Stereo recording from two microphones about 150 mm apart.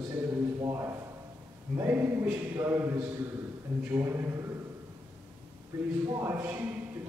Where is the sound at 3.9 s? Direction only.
20° right (ahead or behind).